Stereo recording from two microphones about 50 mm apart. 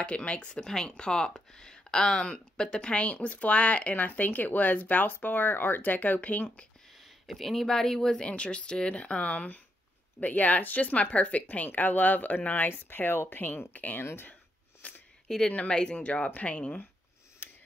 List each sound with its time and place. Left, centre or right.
0.0 s speech: left
7.2 s speech: centre; by 14.0 s left
14.8 s a sound: left
15.2 s speech: centre
15.5 s speech: left